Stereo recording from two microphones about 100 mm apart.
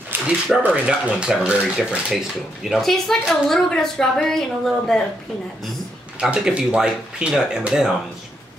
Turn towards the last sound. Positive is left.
turn(degrees=-5)  # may be behind; listen again after turning